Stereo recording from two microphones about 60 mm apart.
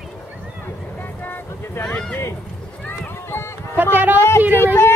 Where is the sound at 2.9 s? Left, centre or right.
Left.